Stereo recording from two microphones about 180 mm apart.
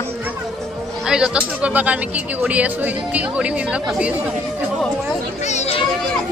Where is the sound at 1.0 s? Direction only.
5° right (ahead or behind).